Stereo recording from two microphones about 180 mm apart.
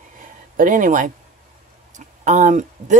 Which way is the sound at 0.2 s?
50° right (ahead or behind).